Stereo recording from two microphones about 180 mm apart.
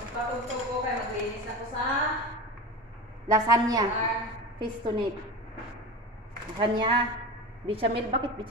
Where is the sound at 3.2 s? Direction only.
20° right (ahead or behind).